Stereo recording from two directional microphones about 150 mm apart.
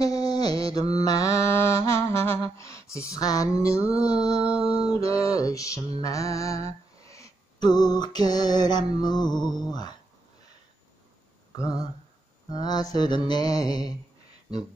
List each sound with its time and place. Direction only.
0.0 s mantra: 25° left (ahead or behind)
0.9 s a sound: 25° left (ahead or behind)
4.0 s mantra: 25° left (ahead or behind)
4.6 s music: 40° right (ahead or behind)
4.8 s mantra: 20° left (ahead or behind)
7.0 s a sound: 20° left (ahead or behind)
11.5 s speech: 25° left (ahead or behind)
12.4 s mantra: 25° left (ahead or behind)